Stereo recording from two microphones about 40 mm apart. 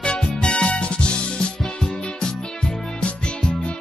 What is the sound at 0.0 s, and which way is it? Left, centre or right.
Music, centre.